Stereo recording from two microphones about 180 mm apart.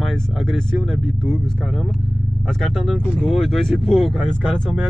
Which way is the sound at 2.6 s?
Centre (ahead or behind).